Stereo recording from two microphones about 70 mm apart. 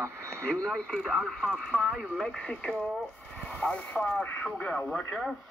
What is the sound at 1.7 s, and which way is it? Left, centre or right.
Speech, right.